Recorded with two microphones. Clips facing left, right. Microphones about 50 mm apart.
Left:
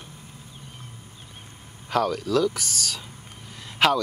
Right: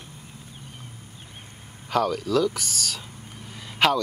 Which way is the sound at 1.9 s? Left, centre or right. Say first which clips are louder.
Even; centre.